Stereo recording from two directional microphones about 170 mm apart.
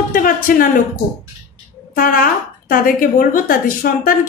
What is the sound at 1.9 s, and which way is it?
A woman's voice, 55° left (ahead or behind).